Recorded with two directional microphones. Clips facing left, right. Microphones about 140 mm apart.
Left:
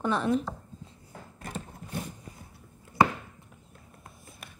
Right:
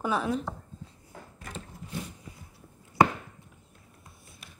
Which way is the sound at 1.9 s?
55° left (ahead or behind).